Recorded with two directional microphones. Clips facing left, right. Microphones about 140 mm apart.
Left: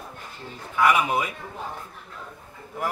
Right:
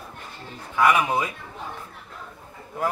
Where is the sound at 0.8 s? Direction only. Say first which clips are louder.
Right 1 dB; 25° right (ahead or behind).